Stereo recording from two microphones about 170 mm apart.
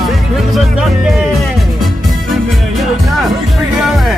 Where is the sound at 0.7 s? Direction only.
Centre (ahead or behind).